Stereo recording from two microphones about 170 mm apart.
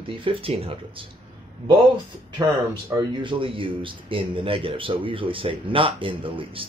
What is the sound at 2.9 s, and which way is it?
Speech, 25° right (ahead or behind).